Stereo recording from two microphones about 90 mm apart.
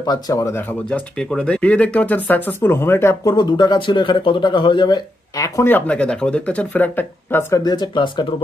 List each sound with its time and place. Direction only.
0.0 s speech: 45° left (ahead or behind)
0.8 s speech: 10° left (ahead or behind); by 3.2 s 30° left (ahead or behind)
3.3 s speech: 55° left (ahead or behind)
5.7 s speech: 20° left (ahead or behind)
7.6 s speech: 55° left (ahead or behind)